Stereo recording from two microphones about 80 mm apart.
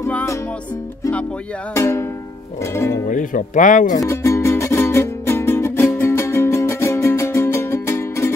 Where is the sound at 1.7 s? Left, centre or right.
Left.